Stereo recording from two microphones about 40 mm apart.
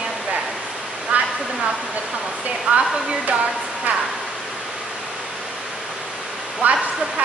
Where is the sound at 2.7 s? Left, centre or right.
Right.